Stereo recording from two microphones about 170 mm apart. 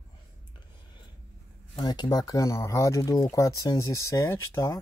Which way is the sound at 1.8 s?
25° left (ahead or behind).